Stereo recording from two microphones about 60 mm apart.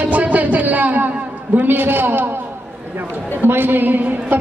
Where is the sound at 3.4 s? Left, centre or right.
Right.